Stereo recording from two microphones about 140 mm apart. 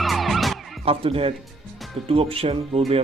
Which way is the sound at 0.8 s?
45° right (ahead or behind).